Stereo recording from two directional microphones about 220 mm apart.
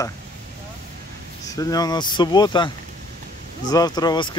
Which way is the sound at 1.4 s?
15° left (ahead or behind).